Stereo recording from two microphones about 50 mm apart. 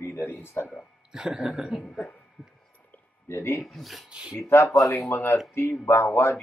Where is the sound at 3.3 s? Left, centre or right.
Left.